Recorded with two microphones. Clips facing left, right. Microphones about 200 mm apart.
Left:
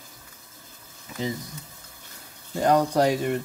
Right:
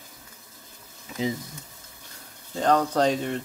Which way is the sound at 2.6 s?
10° left (ahead or behind).